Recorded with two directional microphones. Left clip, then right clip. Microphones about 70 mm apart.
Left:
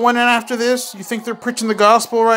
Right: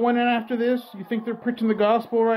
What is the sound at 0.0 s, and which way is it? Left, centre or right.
A man's voice, left.